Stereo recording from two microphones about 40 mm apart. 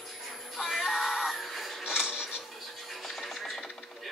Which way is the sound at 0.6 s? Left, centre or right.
Centre.